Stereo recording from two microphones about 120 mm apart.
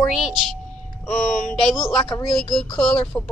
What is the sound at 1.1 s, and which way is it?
Speech, 10° left (ahead or behind).